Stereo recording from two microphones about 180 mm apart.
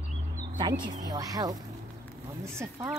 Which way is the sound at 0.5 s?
25° right (ahead or behind).